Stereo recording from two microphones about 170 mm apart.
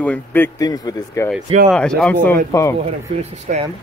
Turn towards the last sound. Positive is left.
turn(degrees=-50)  # may be behind; listen again after turning